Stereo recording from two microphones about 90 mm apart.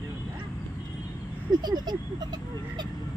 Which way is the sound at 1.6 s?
50° right (ahead or behind).